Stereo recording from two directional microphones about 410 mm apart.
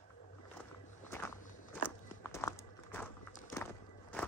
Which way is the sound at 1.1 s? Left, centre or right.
Centre.